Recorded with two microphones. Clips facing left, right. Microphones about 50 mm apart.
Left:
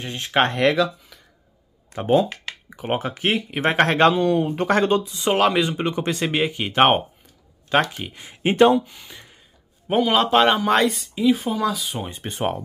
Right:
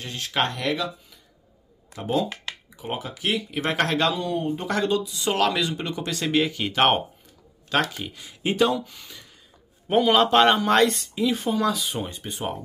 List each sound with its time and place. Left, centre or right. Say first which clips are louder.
0.0 s speech: left 5 dB; left
2.0 s speech: left 6 dB; left
4.3 s speech: left 6 dB; left
4.6 s speech: left 5 dB; left
9.8 s speech: even; centre
12.3 s speech: left 10 dB; left